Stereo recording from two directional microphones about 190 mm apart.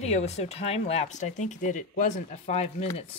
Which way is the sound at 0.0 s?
35° left (ahead or behind).